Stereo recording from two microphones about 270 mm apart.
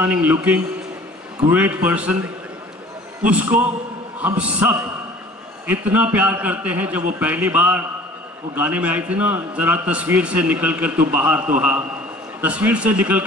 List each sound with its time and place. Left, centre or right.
0.0 s a man's voice: centre
1.6 s a man's voice: centre
3.3 s a man's voice: centre